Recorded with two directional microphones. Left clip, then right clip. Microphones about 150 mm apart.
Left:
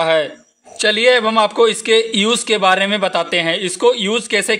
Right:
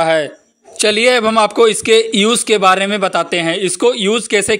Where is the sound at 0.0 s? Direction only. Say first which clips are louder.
Right 1 dB; 40° right (ahead or behind).